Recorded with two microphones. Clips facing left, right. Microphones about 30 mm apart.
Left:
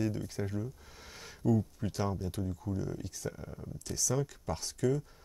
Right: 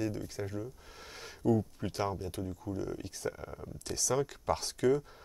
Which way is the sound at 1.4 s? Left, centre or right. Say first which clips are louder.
Right 1 dB; right.